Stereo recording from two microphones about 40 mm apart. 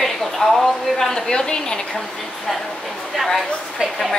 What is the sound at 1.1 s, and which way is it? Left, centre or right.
Speech, centre.